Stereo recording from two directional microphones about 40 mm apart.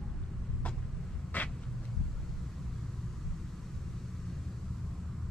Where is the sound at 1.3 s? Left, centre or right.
Left.